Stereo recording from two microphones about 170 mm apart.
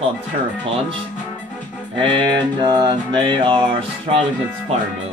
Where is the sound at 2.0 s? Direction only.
30° right (ahead or behind).